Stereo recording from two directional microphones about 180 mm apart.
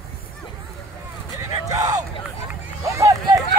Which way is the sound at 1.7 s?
20° right (ahead or behind).